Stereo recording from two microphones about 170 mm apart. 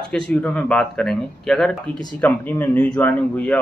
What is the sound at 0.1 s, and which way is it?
A man's voice, 5° left (ahead or behind).